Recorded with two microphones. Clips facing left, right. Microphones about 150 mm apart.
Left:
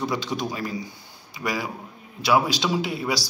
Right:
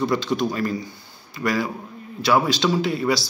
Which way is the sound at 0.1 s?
10° left (ahead or behind).